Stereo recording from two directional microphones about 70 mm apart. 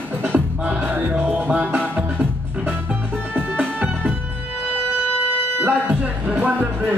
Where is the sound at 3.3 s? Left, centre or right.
Right.